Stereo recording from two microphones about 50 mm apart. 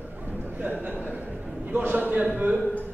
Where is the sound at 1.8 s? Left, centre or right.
Right.